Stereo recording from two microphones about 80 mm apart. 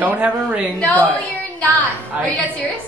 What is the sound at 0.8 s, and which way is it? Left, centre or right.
Speech, centre.